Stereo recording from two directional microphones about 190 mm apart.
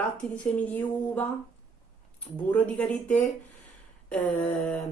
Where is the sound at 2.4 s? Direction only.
5° left (ahead or behind).